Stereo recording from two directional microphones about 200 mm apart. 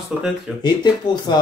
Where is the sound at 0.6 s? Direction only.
20° left (ahead or behind).